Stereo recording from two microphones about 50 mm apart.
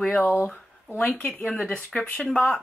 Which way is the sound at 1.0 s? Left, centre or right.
Left.